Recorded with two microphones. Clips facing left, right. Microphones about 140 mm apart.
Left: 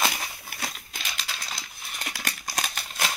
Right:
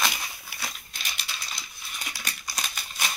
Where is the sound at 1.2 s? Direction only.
90° left; by 2.8 s 50° left (ahead or behind).